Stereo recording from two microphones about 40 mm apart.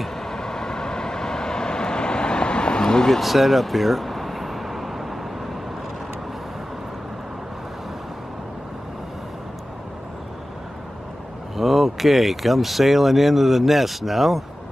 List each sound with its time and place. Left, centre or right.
0.2 s vehicle: centre
3.1 s a sound: centre
11.5 s speech: centre